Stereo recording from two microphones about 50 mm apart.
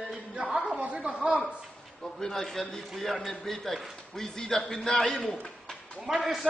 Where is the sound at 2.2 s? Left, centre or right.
Centre.